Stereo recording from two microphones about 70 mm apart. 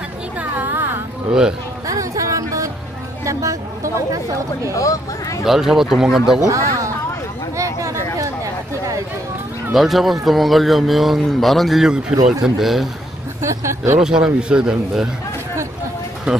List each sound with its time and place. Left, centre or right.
0.4 s a sound: right
1.9 s music: right
3.3 s a sound: right
4.7 s speech: left
5.4 s speech: centre
6.4 s speech: right
7.5 s a sound: right
9.7 s speech: centre
13.4 s speech: right
13.9 s speech: centre
16.3 s speech: centre